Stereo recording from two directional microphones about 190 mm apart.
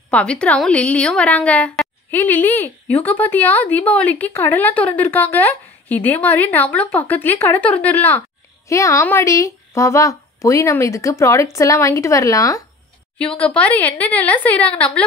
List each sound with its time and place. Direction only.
0.1 s a woman's voice: 5° left (ahead or behind)
13.2 s a woman's voice: 5° left (ahead or behind)